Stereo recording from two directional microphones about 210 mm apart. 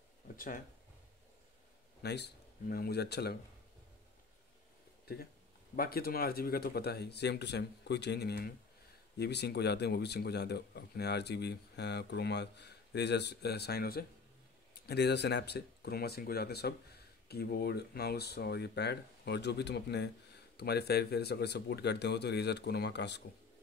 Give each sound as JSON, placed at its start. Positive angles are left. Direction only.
{"t": 2.0, "sound": "speech", "side_deg": 50}
{"t": 5.0, "sound": "speech", "side_deg": 45}